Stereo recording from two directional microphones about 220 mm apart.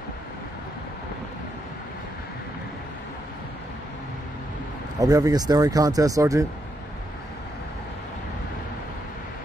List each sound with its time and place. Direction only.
5.0 s speech: 15° right (ahead or behind)